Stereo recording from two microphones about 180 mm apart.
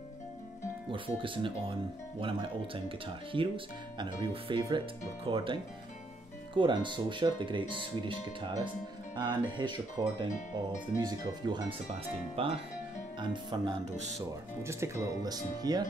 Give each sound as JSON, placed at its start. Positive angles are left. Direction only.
{"t": 0.9, "sound": "speech", "side_deg": -30}
{"t": 9.1, "sound": "music", "side_deg": -25}
{"t": 9.6, "sound": "speech", "side_deg": -25}